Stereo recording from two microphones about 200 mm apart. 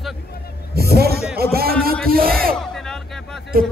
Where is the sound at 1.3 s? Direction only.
50° right (ahead or behind).